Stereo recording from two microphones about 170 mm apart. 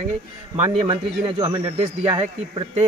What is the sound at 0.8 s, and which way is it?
Speech, 25° right (ahead or behind).